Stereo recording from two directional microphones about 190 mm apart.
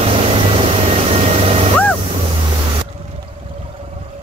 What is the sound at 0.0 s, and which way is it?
Vehicle, 30° right (ahead or behind).